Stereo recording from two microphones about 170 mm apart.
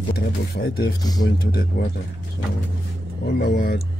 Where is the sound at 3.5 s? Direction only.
60° left (ahead or behind).